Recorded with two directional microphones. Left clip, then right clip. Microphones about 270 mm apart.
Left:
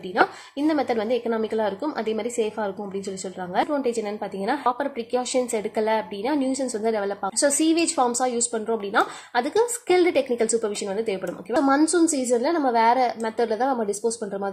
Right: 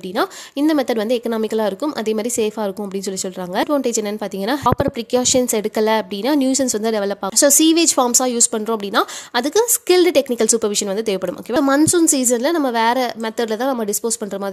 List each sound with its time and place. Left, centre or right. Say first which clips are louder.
0.9 s a woman's voice: right 4 dB; right